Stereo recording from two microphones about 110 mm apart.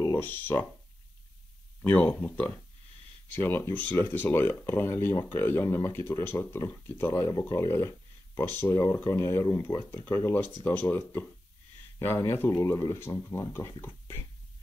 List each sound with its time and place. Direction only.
0.1 s speech: 20° left (ahead or behind)
1.8 s speech: 15° left (ahead or behind)